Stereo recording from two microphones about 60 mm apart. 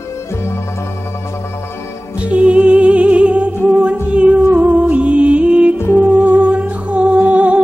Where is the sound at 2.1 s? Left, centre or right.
Centre.